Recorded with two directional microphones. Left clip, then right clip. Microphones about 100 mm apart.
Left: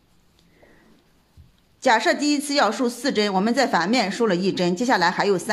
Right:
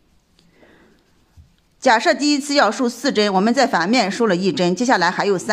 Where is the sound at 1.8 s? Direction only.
30° right (ahead or behind).